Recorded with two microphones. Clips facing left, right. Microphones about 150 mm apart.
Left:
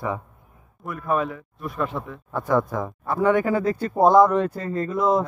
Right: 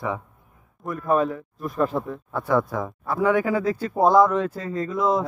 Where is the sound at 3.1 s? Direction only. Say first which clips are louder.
Left 1 dB; 5° right (ahead or behind).